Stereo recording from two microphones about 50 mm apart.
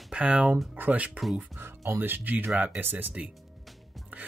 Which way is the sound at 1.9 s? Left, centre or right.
Right.